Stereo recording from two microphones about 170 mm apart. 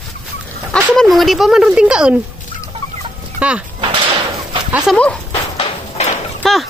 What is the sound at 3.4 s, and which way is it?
Speech, 5° right (ahead or behind).